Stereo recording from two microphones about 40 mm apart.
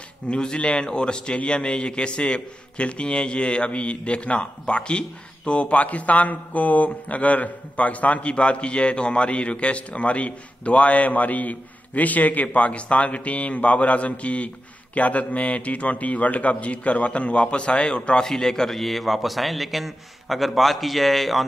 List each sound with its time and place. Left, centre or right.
0.3 s a man's voice: left
18.2 s a man's voice: centre